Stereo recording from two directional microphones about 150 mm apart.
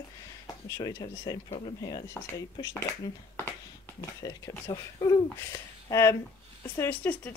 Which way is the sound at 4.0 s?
25° left (ahead or behind).